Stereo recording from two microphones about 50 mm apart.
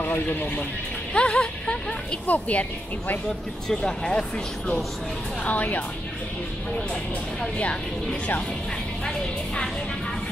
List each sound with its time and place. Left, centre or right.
0.0 s speech: left
1.1 s speech: left
2.2 s speech: left
3.6 s speech: centre
5.4 s speech: left